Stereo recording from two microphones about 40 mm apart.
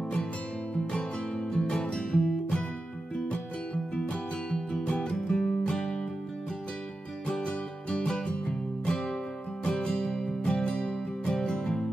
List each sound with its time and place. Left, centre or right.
1.5 s music: centre
7.2 s music: left